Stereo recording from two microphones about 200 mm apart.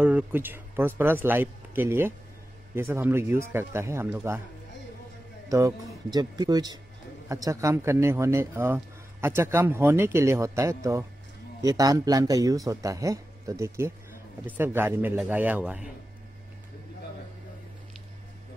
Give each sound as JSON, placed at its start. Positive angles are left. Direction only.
{"t": 0.0, "sound": "speech", "side_deg": -10}
{"t": 5.5, "sound": "speech", "side_deg": -15}